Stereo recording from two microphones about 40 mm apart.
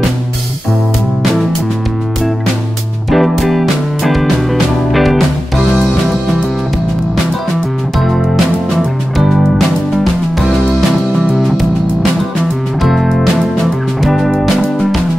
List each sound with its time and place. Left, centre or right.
3.1 s music: centre
9.1 s music: centre
11.3 s music: centre